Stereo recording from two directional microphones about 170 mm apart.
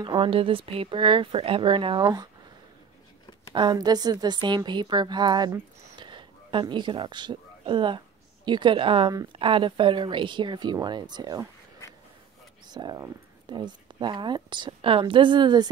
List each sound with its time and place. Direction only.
0.0 s a woman's voice: 30° right (ahead or behind)
3.5 s speech: 25° right (ahead or behind)
5.9 s a sound: 30° right (ahead or behind)
8.5 s speech: 30° right (ahead or behind)
12.6 s speech: 25° right (ahead or behind)